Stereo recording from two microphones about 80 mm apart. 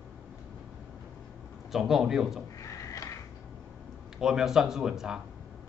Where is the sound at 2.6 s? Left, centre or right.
Left.